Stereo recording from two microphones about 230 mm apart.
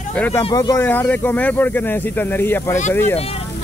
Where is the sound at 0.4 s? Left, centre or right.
Centre.